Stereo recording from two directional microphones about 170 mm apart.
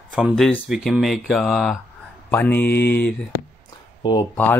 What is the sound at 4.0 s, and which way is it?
Speech, 25° left (ahead or behind).